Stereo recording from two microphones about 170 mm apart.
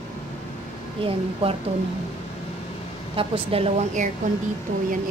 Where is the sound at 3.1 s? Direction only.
30° right (ahead or behind).